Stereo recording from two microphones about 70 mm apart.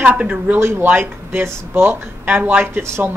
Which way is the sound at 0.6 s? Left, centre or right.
Right.